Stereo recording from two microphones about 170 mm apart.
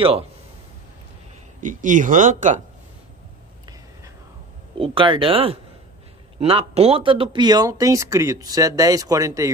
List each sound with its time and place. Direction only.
1.6 s speech: 50° right (ahead or behind)
4.7 s speech: 30° right (ahead or behind)